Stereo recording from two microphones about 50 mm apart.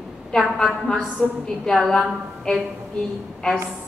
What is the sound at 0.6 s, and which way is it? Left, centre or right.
A woman's voice, centre.